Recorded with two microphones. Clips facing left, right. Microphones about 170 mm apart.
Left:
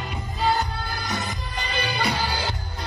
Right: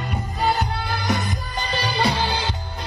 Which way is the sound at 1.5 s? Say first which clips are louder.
Right 3 dB; 35° right (ahead or behind).